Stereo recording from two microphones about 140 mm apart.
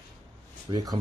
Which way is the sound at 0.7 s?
30° right (ahead or behind).